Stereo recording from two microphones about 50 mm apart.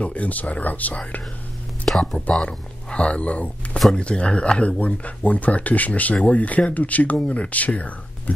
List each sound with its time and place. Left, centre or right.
0.0 s speech: left
1.9 s speech: centre
2.3 s speech: left